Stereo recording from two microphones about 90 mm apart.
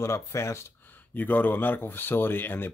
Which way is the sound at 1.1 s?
20° left (ahead or behind).